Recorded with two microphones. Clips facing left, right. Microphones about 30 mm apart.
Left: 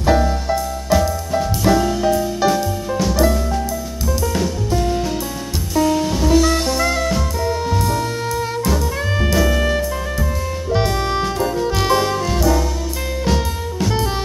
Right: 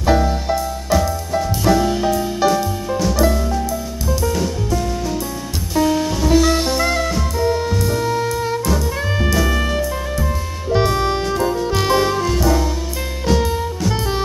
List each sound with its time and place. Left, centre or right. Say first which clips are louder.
0.8 s music: left 2 dB; centre
5.8 s music: even; centre